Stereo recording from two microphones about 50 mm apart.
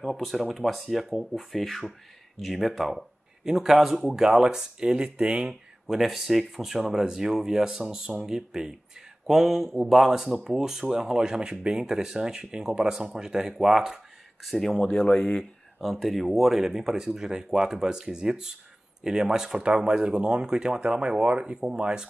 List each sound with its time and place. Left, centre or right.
0.0 s speech: centre
5.5 s speech: centre
14.8 s speech: centre
15.8 s speech: centre